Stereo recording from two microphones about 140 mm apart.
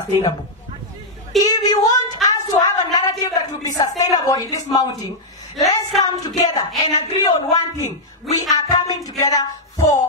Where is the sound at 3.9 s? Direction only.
25° left (ahead or behind).